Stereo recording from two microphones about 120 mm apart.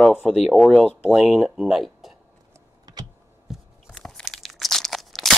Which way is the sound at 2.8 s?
35° right (ahead or behind).